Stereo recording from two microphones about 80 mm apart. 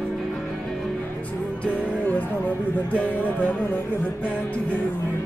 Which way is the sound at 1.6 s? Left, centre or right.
Centre.